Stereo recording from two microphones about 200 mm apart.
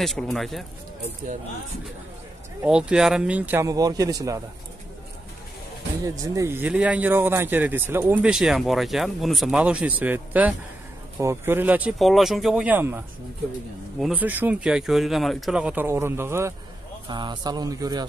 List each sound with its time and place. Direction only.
0.0 s speech: centre (ahead or behind)
2.6 s speech: 5° right (ahead or behind)
6.0 s speech: 15° right (ahead or behind)